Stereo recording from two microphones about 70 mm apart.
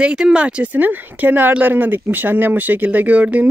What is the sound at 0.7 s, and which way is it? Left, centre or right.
Speech, right.